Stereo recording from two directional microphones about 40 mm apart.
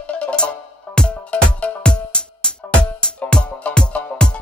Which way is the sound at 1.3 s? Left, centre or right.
Left.